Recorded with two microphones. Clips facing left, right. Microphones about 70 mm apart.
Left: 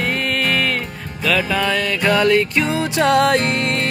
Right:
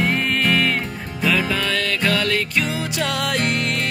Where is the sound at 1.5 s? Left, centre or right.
Centre.